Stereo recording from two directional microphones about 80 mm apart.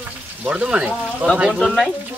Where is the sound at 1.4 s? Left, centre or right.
Centre.